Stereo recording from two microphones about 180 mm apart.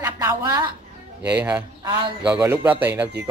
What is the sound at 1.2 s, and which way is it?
Speech, 10° right (ahead or behind).